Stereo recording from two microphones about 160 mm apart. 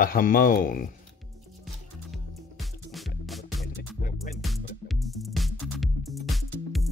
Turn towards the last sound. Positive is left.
turn(degrees=0)  # may be behind; listen again after turning